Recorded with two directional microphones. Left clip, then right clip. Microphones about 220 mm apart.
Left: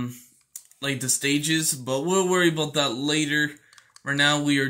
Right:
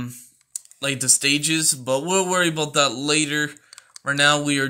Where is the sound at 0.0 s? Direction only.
20° right (ahead or behind).